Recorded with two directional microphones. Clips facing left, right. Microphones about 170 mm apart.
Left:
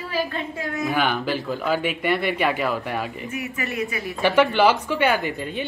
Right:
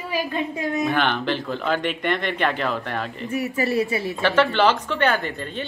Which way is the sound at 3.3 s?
35° right (ahead or behind).